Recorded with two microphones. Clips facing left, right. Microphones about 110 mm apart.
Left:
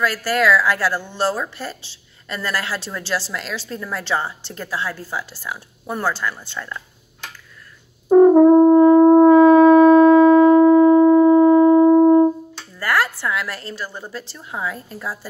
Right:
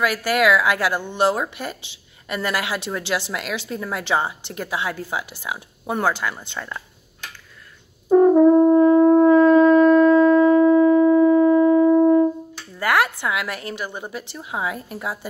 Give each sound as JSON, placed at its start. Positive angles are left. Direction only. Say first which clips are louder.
{"t": 0.0, "sound": "a woman's voice", "louder": "even", "side_deg": -15}
{"t": 8.1, "sound": "brass instrument", "louder": "left 3 dB", "side_deg": 15}
{"t": 9.3, "sound": "shofar", "louder": "left 3 dB", "side_deg": 15}
{"t": 10.5, "sound": "music", "louder": "left 3 dB", "side_deg": 30}
{"t": 12.7, "sound": "a woman's voice", "louder": "right 1 dB", "side_deg": -20}